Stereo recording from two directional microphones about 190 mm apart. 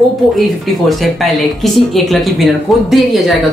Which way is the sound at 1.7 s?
Centre (ahead or behind).